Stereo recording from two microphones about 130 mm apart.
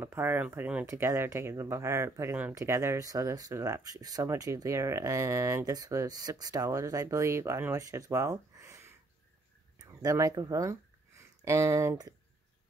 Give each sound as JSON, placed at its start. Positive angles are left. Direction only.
{"t": 0.0, "sound": "speech", "side_deg": -15}